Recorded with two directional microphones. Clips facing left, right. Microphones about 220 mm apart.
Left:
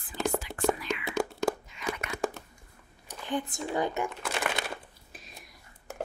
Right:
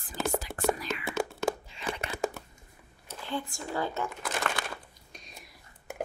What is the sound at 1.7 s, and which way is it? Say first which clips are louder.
Crumpling: left 1 dB; 30° right (ahead or behind).